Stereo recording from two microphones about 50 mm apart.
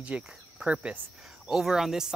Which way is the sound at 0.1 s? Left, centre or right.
Right.